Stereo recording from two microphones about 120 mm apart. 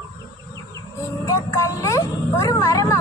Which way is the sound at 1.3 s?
30° left (ahead or behind).